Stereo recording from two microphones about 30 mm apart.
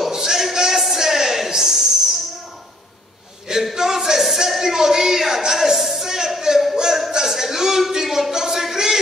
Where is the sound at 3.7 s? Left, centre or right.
Centre.